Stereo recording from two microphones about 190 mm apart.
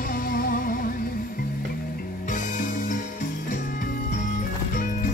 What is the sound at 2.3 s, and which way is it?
Music, 45° left (ahead or behind).